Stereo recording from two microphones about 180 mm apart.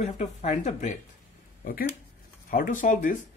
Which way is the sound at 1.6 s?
55° left (ahead or behind).